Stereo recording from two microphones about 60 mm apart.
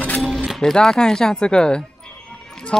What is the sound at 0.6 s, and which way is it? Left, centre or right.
A man's voice, centre.